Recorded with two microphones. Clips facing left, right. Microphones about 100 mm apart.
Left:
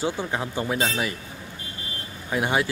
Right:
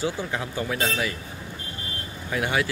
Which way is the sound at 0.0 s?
25° left (ahead or behind).